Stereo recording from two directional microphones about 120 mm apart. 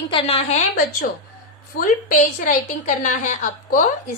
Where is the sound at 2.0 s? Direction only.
90° left.